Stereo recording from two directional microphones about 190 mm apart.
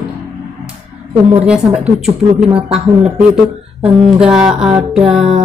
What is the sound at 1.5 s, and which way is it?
Speech, 5° right (ahead or behind).